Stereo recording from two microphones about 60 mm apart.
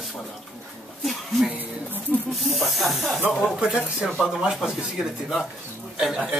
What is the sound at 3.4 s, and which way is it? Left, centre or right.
Speech, centre.